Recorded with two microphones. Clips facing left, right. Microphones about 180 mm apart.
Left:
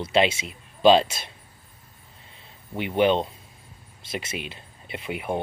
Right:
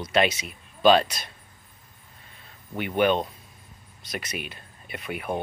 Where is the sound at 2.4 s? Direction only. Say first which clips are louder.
Left 1 dB; 25° left (ahead or behind).